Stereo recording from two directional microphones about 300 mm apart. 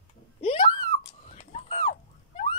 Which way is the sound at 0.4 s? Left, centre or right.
Centre.